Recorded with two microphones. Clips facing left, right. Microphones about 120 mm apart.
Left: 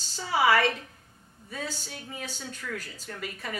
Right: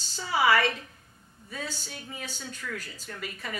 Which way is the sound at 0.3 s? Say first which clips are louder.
Left 1 dB; 45° left (ahead or behind).